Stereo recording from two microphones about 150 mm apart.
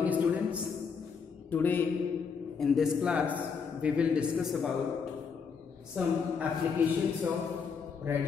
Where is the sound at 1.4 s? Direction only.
10° left (ahead or behind).